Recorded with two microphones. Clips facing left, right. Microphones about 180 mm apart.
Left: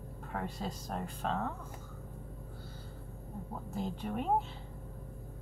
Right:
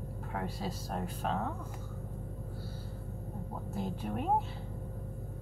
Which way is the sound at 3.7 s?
Centre (ahead or behind).